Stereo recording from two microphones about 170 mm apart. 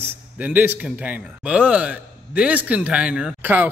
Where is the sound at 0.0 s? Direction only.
10° right (ahead or behind).